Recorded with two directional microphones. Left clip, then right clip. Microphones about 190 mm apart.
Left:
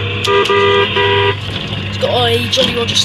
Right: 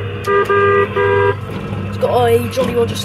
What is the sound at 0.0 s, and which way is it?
Vehicle, 30° left (ahead or behind).